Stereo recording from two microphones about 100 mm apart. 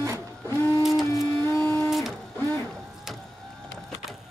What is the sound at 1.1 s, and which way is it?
Printer, 30° left (ahead or behind).